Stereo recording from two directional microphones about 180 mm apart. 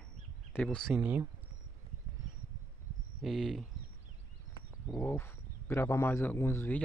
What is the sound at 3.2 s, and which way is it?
Speech, centre (ahead or behind).